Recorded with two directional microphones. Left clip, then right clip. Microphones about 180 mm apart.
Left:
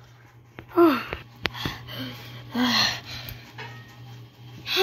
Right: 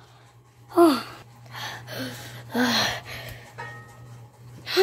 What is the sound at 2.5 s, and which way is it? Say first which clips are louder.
Gasp: even; 10° right (ahead or behind).